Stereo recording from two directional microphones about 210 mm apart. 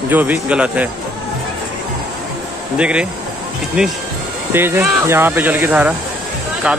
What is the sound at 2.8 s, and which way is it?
Speech, 5° right (ahead or behind).